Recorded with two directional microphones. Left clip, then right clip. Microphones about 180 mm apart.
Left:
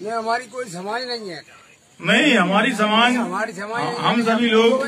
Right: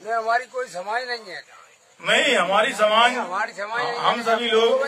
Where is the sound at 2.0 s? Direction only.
90° right.